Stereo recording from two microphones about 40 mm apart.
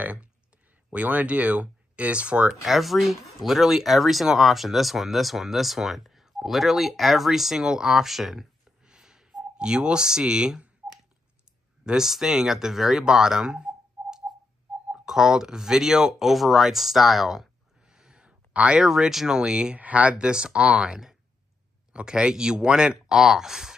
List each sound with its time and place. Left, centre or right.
0.8 s speech: right
2.6 s speech: centre
8.8 s a sound: centre
11.8 s speech: centre
13.0 s a sound: centre
15.0 s speech: centre
18.2 s a sound: right
18.8 s speech: centre
19.8 s speech: right; by 23.7 s centre